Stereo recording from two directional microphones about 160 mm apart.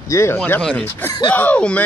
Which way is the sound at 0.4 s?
5° left (ahead or behind).